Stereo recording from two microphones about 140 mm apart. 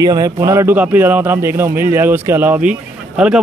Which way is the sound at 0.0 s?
25° right (ahead or behind).